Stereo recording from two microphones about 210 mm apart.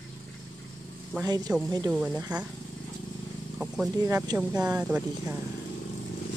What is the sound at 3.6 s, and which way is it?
Speech, 5° right (ahead or behind).